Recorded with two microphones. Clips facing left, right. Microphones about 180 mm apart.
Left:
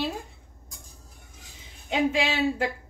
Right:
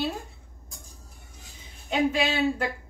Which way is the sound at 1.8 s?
20° left (ahead or behind).